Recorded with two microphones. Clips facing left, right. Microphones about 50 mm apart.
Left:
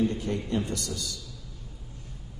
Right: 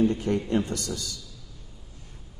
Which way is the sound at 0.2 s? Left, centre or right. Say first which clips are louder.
Right 4 dB; right.